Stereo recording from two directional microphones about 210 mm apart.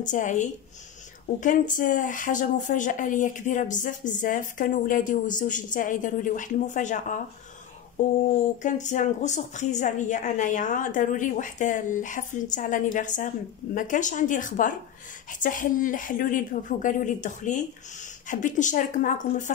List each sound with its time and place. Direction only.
0.0 s speech: 35° left (ahead or behind)